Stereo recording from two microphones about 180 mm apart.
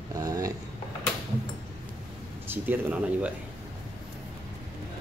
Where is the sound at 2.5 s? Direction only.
10° right (ahead or behind).